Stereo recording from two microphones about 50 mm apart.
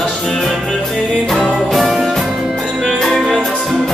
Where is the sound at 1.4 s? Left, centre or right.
Centre.